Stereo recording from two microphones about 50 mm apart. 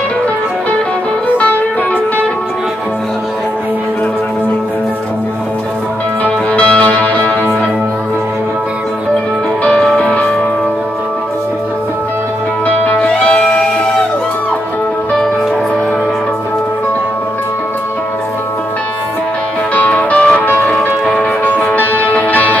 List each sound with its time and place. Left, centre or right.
6.2 s music: left
9.9 s music: left
12.6 s music: left; by 14.0 s centre
19.7 s music: left